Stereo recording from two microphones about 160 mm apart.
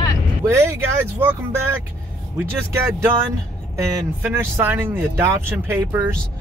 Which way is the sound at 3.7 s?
10° right (ahead or behind).